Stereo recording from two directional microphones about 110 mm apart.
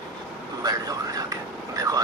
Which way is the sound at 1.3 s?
35° right (ahead or behind).